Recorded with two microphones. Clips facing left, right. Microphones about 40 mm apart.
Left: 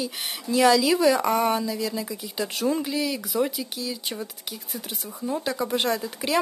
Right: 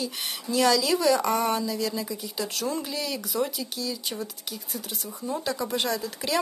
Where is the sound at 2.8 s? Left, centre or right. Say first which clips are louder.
Left 4 dB; centre.